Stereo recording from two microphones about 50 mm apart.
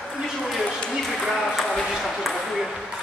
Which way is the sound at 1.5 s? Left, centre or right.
Centre.